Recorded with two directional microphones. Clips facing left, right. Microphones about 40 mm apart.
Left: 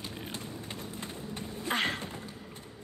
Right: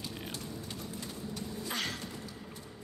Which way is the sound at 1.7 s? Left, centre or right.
Left.